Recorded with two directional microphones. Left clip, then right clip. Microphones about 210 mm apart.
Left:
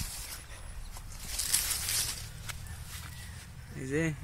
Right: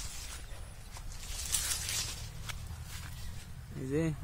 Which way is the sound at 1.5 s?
25° left (ahead or behind).